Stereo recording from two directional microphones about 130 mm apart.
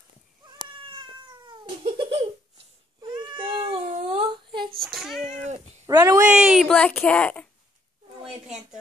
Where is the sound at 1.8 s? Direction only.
50° right (ahead or behind).